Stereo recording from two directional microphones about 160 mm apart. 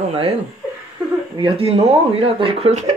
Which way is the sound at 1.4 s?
40° right (ahead or behind).